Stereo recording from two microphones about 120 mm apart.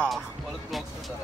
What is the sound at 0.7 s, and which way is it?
Vehicle, centre (ahead or behind).